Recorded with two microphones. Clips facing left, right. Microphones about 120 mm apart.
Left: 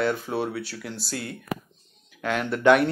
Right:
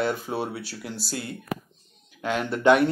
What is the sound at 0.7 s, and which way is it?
Speech, 5° right (ahead or behind).